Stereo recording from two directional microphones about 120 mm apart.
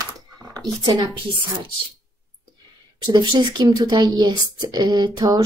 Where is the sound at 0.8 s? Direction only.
35° right (ahead or behind).